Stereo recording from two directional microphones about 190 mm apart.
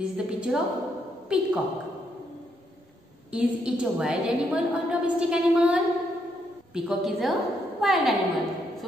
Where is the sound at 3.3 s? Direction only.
5° right (ahead or behind).